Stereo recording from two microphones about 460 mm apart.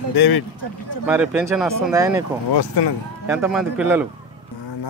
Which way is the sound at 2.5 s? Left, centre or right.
Left.